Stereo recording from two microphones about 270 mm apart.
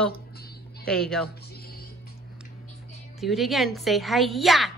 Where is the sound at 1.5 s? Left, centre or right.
Left.